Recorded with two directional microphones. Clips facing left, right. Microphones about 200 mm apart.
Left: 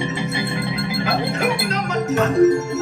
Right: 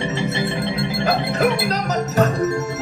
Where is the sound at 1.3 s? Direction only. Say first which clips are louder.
Right 2 dB; 35° right (ahead or behind).